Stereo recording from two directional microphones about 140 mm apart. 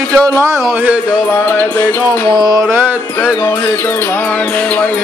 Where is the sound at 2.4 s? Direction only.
25° right (ahead or behind).